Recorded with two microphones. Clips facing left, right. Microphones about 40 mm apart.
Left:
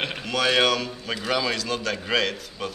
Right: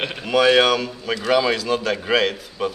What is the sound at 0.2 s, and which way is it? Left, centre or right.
A man's voice, centre.